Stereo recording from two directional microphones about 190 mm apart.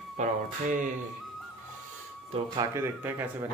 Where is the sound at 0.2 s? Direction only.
40° right (ahead or behind).